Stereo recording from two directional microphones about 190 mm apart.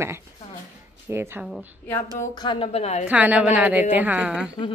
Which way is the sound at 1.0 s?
10° right (ahead or behind).